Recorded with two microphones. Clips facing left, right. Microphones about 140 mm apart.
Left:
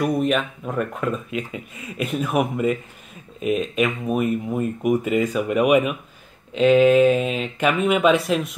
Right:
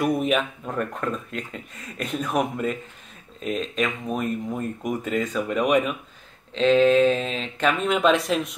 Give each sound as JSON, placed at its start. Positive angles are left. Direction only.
{"t": 0.0, "sound": "speech", "side_deg": 0}